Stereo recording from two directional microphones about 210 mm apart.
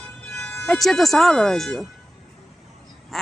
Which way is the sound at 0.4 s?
5° left (ahead or behind).